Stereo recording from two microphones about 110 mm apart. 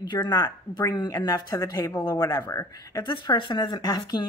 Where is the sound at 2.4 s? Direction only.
25° left (ahead or behind).